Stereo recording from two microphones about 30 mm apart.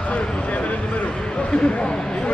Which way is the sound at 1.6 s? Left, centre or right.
Left.